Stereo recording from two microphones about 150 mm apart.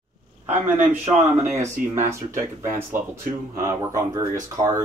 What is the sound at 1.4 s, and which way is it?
Speech, 55° right (ahead or behind).